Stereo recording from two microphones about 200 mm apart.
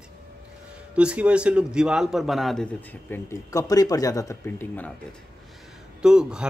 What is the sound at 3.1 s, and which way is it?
Speech, 15° left (ahead or behind).